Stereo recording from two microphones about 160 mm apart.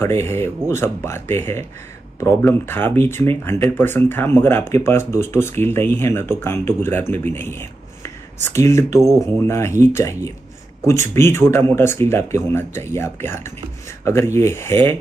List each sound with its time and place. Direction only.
0.0 s speech: 15° left (ahead or behind)